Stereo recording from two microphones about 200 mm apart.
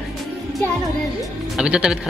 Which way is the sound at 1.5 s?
5° right (ahead or behind).